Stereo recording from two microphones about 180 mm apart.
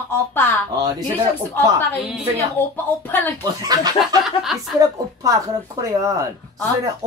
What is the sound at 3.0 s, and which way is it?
Speech, 10° left (ahead or behind).